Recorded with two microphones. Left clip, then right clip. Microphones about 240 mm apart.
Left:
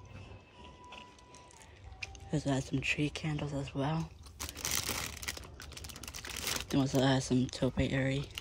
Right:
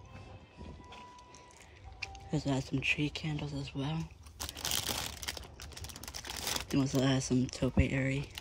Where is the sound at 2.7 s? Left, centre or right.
Centre.